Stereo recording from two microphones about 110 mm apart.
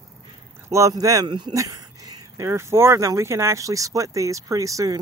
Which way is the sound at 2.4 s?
25° right (ahead or behind).